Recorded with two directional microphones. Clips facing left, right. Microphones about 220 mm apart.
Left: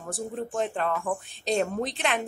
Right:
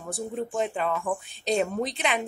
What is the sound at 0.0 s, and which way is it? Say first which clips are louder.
Speech: right 1 dB; 5° right (ahead or behind).